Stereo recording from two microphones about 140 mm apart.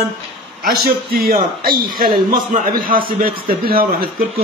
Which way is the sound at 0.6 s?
90° right.